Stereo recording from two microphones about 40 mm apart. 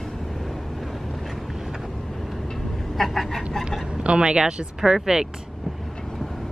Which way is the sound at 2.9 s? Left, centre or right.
Centre.